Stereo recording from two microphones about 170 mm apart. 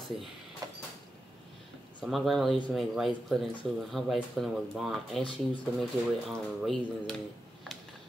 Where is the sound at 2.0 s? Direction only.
Centre (ahead or behind).